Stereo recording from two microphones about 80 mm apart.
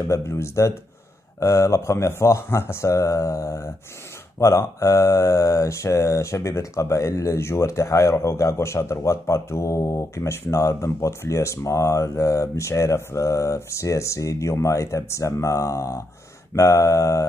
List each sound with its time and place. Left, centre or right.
0.1 s mantra: left